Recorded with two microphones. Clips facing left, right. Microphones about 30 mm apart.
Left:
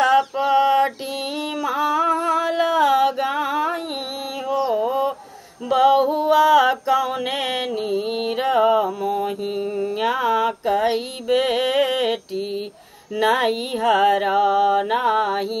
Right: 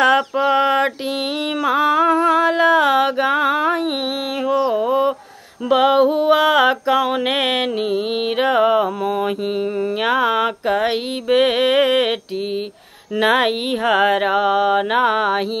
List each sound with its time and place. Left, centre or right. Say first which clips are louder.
0.0 s a sound: right 2 dB; right
5.7 s mantra: right 2 dB; right
13.2 s mantra: right 3 dB; right